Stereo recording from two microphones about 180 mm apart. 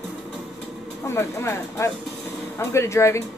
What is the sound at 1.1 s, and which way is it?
Speech, 15° left (ahead or behind).